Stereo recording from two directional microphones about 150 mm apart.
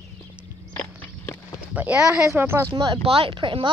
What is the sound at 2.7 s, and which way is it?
Speech, 35° right (ahead or behind).